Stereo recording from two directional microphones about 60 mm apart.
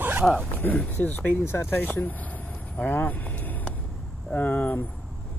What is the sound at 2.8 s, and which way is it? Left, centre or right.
Vehicle, left.